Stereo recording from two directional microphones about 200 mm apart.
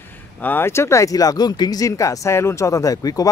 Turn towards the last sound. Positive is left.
turn(degrees=20)  # may be behind; listen again after turning